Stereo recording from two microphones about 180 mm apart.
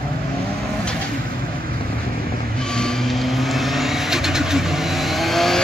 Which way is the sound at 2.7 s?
5° left (ahead or behind).